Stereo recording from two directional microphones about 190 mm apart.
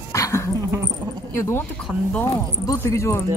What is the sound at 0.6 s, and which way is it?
Dog, 15° right (ahead or behind).